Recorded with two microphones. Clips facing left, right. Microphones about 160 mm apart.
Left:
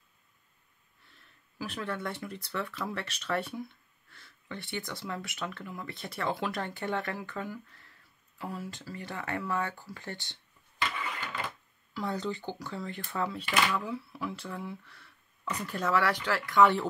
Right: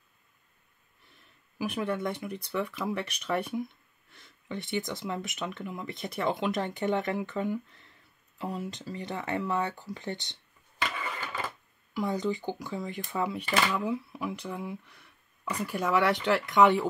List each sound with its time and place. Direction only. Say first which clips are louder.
1.6 s speech: right 5 dB; 15° right (ahead or behind)
11.9 s speech: right 4 dB; 15° right (ahead or behind)